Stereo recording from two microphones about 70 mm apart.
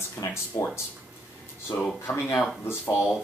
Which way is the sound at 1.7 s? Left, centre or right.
Left.